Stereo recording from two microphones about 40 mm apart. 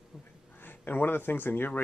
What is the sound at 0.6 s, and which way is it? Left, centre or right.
Speech, left.